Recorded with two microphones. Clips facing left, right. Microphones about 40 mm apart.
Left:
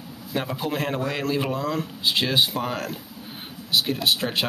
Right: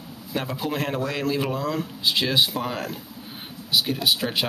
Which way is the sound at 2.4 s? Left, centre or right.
Centre.